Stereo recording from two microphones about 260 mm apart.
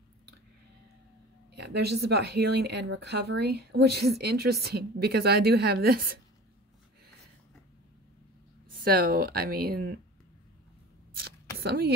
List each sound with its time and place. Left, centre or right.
1.5 s speech: right
8.8 s speech: right
11.1 s a sound: right